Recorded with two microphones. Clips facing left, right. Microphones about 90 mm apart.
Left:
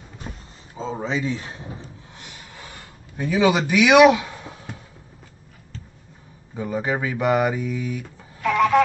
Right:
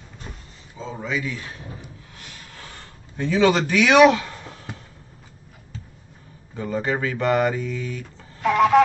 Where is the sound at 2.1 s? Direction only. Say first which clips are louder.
Left 1 dB; 20° left (ahead or behind).